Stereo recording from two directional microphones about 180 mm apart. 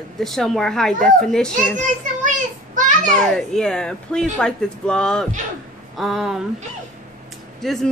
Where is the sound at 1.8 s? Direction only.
45° right (ahead or behind).